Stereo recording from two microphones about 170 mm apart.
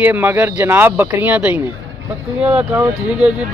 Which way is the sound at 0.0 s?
10° right (ahead or behind).